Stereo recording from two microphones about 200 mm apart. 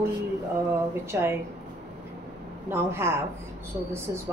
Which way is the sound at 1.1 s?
10° right (ahead or behind).